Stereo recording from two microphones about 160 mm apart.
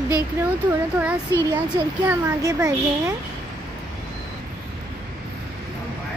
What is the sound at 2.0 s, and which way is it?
Speech, 15° right (ahead or behind).